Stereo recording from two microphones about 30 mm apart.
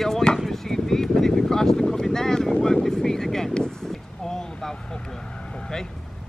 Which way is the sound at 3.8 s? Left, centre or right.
Centre.